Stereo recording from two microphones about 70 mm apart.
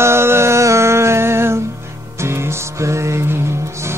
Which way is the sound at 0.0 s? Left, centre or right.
Right.